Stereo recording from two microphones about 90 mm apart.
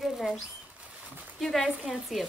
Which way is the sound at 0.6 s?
15° right (ahead or behind).